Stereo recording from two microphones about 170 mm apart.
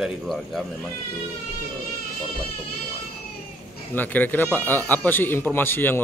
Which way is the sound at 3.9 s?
10° left (ahead or behind).